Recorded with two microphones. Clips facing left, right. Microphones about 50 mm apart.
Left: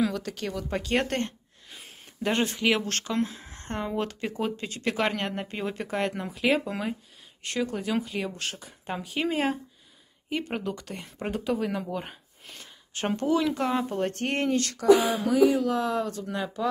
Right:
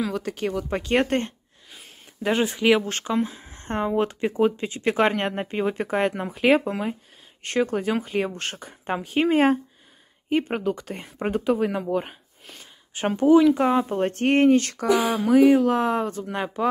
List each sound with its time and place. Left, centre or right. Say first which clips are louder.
0.1 s speech: right 6 dB; right
1.7 s speech: even; centre; by 6.2 s right
6.3 s speech: right 6 dB; right
12.1 s a sound: right 1 dB; centre
13.8 s speech: right 6 dB; right